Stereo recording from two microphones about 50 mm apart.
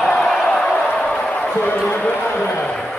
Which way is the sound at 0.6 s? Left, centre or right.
Left.